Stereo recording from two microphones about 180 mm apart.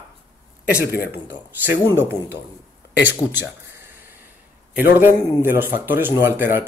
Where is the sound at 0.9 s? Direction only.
60° left (ahead or behind).